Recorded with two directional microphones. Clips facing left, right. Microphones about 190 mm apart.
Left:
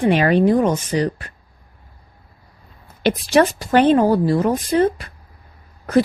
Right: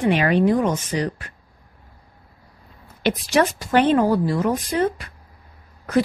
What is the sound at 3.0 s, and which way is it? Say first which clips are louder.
A woman's voice: left 4 dB; 30° left (ahead or behind).